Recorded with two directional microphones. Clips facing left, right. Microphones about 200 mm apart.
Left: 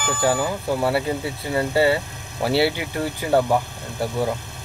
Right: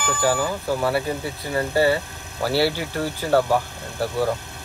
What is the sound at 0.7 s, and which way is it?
Speech, 25° left (ahead or behind).